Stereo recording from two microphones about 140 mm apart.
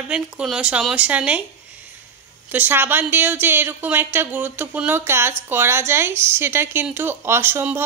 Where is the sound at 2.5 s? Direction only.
15° right (ahead or behind).